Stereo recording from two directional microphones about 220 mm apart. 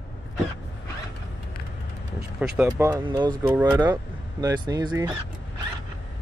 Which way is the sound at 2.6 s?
10° right (ahead or behind).